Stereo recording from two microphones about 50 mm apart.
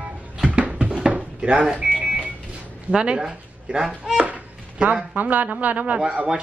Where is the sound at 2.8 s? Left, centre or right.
Centre.